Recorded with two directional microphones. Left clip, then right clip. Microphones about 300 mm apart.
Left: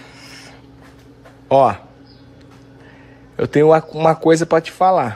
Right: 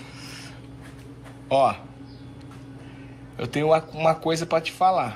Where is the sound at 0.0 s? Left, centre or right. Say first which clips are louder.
Left 2 dB; left.